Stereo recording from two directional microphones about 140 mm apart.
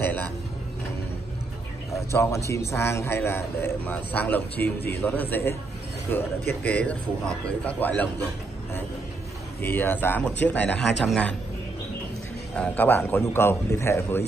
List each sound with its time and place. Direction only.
0.0 s speech: 10° left (ahead or behind)
2.1 s a man's voice: 20° left (ahead or behind)
9.6 s a man's voice: 15° left (ahead or behind)
12.5 s a man's voice: 10° left (ahead or behind)